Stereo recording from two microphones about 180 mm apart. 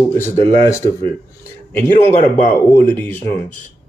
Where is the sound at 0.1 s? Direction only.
10° left (ahead or behind).